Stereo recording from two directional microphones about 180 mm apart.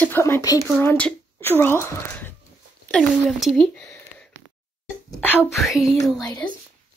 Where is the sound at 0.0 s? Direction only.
10° left (ahead or behind).